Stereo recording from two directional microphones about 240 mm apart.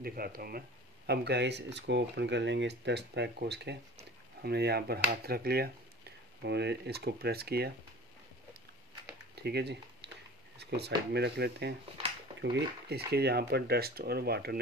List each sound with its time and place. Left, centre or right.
0.0 s speech: right
9.3 s a sound: right
11.1 s speech: right